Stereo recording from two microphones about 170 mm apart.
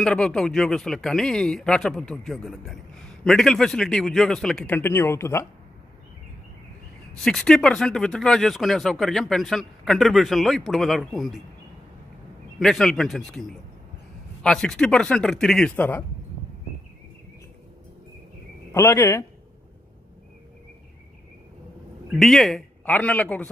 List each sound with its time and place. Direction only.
0.0 s speech: 5° left (ahead or behind)
7.2 s speech: 5° left (ahead or behind)
12.5 s speech: centre (ahead or behind)
18.7 s speech: 15° left (ahead or behind)
22.1 s speech: centre (ahead or behind)